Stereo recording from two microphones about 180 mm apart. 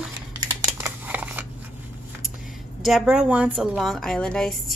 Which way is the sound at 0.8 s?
10° right (ahead or behind).